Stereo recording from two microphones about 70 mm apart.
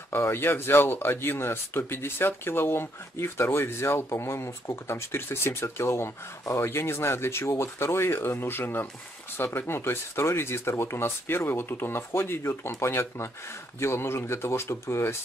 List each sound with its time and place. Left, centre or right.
0.1 s speech: left